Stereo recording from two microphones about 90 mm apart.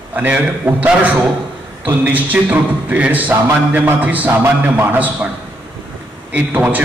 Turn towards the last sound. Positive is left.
turn(degrees=-20)  # may be behind; listen again after turning